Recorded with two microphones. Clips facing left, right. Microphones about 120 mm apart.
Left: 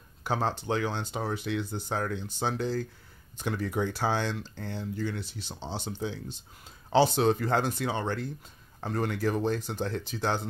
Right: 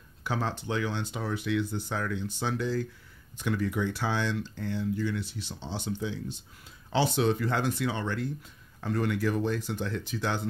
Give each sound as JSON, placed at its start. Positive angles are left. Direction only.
{"t": 0.2, "sound": "speech", "side_deg": 35}